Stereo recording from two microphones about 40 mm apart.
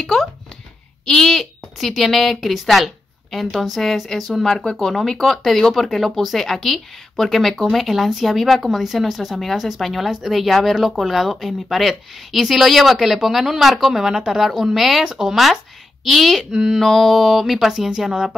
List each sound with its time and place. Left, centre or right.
1.0 s a woman's voice: centre
15.0 s a woman's voice: centre
16.8 s speech: centre